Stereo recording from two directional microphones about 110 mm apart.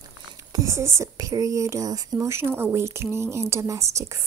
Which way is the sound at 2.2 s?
20° right (ahead or behind).